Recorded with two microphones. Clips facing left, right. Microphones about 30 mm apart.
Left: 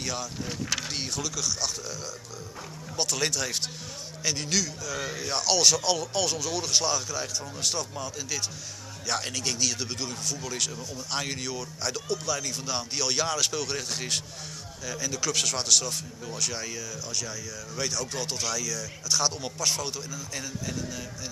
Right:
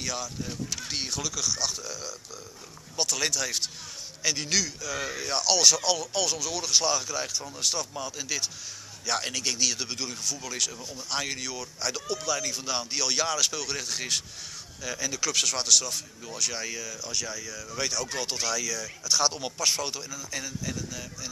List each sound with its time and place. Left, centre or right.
0.0 s a man's voice: centre
0.5 s speech: left
0.8 s a man's voice: centre
10.8 s speech: centre
11.1 s a man's voice: centre
20.1 s a man's voice: centre